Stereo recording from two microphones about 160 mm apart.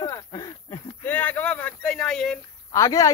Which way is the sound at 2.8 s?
20° left (ahead or behind).